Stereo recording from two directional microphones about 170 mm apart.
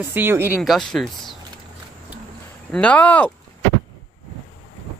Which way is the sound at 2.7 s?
5° left (ahead or behind).